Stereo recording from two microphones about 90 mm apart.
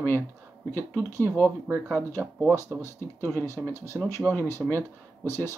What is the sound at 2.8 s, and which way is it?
Speech, 30° left (ahead or behind).